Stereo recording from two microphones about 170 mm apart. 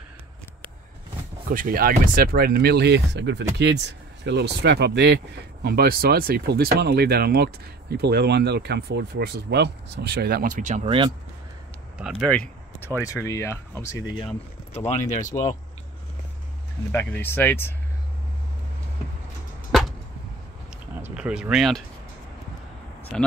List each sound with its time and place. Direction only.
1.5 s speech: 55° right (ahead or behind)
12.0 s speech: 5° right (ahead or behind)
12.3 s a sound: 10° left (ahead or behind)
13.0 s speech: 20° left (ahead or behind)
14.2 s speech: 40° left (ahead or behind)
16.9 s speech: 10° left (ahead or behind)
20.9 s speech: 10° right (ahead or behind)
23.1 s speech: 5° left (ahead or behind)